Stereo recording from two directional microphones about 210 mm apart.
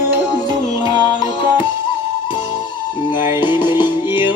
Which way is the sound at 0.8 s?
20° left (ahead or behind).